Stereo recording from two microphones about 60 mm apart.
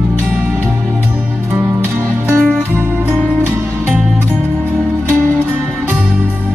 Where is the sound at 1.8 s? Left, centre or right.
Right.